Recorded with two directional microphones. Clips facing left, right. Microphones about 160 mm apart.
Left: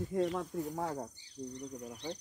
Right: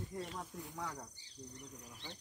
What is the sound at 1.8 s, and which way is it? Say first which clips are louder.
Speech: left 11 dB; 45° left (ahead or behind).